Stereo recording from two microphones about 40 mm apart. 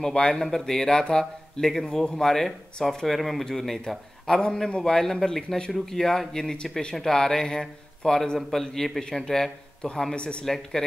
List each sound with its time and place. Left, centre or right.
0.0 s a man's voice: centre
4.3 s a man's voice: left
4.8 s a man's voice: centre
6.5 s a man's voice: left
8.4 s a man's voice: centre; by 10.4 s left
10.4 s a man's voice: centre